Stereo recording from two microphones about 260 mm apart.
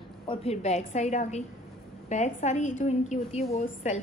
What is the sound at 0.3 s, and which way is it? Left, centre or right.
A woman's voice, left.